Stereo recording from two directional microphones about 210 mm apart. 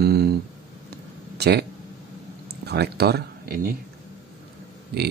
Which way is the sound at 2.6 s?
50° right (ahead or behind).